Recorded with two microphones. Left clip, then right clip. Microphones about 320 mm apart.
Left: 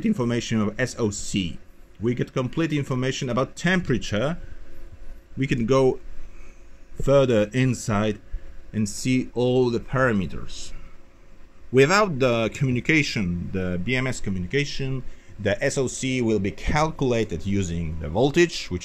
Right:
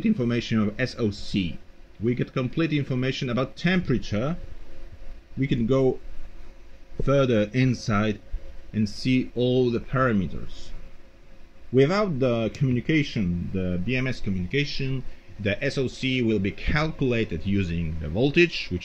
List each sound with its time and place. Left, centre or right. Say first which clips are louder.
0.0 s a man's voice: left 1 dB; left
5.4 s a man's voice: left 3 dB; left
7.1 s a man's voice: left 3 dB; left
9.3 s speech: left 4 dB; left
9.6 s a man's voice: left 2 dB; left
11.7 s a man's voice: left 4 dB; left